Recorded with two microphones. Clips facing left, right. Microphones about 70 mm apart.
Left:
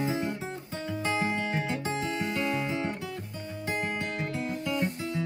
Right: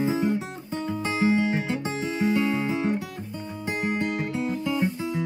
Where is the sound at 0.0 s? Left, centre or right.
Centre.